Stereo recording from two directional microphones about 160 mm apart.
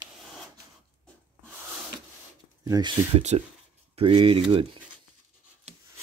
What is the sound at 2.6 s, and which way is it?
Speech, 20° right (ahead or behind).